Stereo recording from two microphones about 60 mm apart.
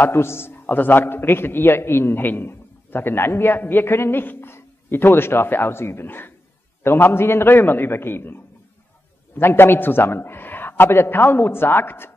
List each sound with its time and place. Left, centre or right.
0.0 s a man's voice: left
9.4 s a man's voice: left